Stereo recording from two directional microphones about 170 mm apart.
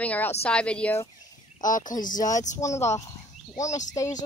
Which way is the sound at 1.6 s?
50° left (ahead or behind).